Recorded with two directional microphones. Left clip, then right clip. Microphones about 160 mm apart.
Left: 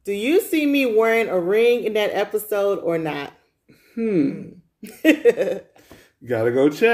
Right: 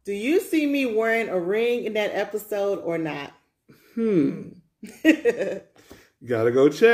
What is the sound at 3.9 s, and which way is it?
Throat clearing, 25° right (ahead or behind).